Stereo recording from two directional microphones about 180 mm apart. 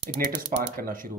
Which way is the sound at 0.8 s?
50° right (ahead or behind).